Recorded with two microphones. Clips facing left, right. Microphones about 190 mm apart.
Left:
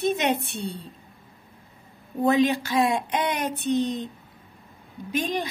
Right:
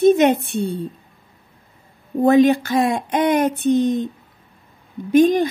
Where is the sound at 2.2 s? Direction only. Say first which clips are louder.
Right 7 dB; 50° right (ahead or behind).